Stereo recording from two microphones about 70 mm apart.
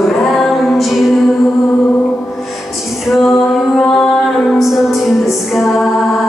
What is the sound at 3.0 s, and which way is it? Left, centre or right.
Music, centre.